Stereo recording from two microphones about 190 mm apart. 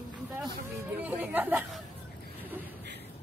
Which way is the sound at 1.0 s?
10° right (ahead or behind).